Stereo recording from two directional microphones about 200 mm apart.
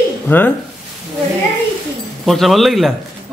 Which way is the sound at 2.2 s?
Centre (ahead or behind).